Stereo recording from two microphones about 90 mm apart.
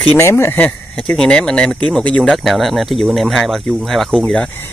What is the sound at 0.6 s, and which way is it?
Speech, 15° left (ahead or behind).